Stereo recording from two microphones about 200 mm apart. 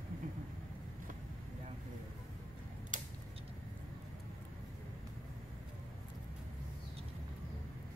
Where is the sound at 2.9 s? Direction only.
40° right (ahead or behind).